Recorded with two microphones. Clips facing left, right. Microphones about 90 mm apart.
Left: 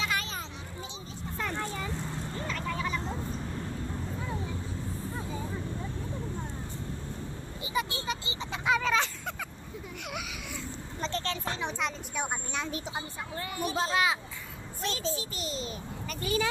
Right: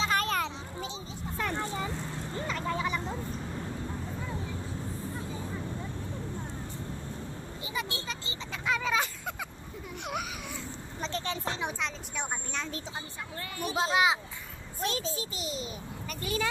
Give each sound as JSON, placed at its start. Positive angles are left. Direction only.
{"t": 0.1, "sound": "children playing", "side_deg": -55}
{"t": 1.6, "sound": "vehicle", "side_deg": -20}
{"t": 7.6, "sound": "speech", "side_deg": 10}
{"t": 8.8, "sound": "a sound", "side_deg": -5}
{"t": 10.0, "sound": "a sound", "side_deg": -30}
{"t": 11.0, "sound": "a woman's voice", "side_deg": 0}
{"t": 11.2, "sound": "a child's voice", "side_deg": -20}
{"t": 11.8, "sound": "speech", "side_deg": 5}
{"t": 13.7, "sound": "a child's voice", "side_deg": -20}
{"t": 14.8, "sound": "a child's voice", "side_deg": -45}
{"t": 15.3, "sound": "a child's voice", "side_deg": -10}